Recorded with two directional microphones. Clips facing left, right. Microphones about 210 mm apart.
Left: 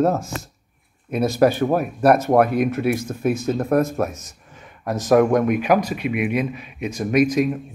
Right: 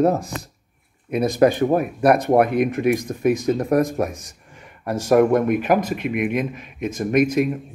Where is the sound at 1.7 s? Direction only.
15° right (ahead or behind).